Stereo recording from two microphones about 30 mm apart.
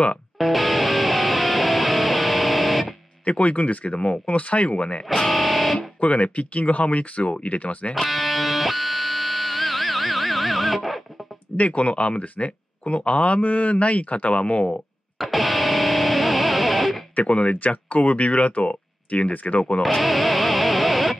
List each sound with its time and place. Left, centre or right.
0.4 s music: centre
3.3 s speech: left
5.2 s music: centre
5.9 s speech: left
7.9 s music: centre
11.5 s speech: left
13.4 s speech: left
15.1 s music: centre
17.1 s speech: left
17.6 s speech: left
19.8 s music: centre